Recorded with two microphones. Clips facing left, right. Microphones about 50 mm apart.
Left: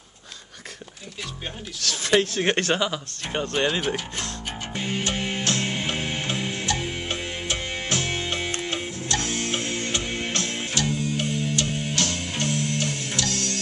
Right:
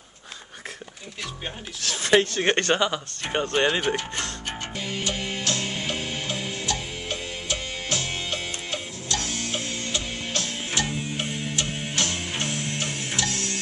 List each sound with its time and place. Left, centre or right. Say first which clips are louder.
2.0 s speech: right 1 dB; centre
3.3 s speech: right 2 dB; centre
4.7 s music: left 3 dB; left
10.7 s music: left 1 dB; centre